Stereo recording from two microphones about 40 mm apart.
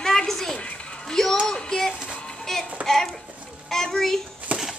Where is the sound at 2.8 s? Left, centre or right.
Centre.